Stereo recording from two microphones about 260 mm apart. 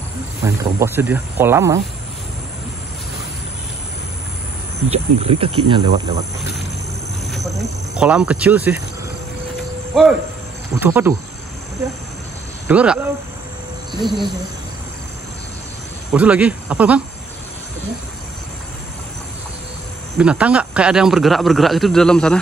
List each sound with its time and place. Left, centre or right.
0.4 s speech: centre
4.8 s speech: right
8.0 s speech: centre
9.9 s speech: centre
12.6 s speech: centre
16.1 s speech: centre
20.2 s speech: centre